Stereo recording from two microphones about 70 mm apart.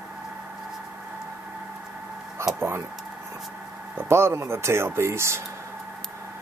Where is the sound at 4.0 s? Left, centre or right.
Right.